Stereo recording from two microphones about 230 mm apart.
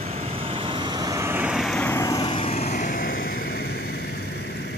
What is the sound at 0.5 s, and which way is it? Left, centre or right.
Vehicle, right.